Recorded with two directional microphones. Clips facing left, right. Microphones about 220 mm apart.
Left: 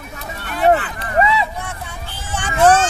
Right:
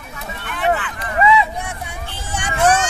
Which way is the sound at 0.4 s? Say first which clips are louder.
Left 5 dB; 40° left (ahead or behind).